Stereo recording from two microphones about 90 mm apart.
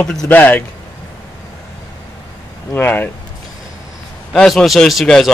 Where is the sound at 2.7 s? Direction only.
20° left (ahead or behind).